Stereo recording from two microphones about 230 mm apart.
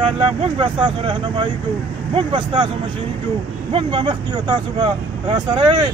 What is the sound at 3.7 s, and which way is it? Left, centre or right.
Speech, right.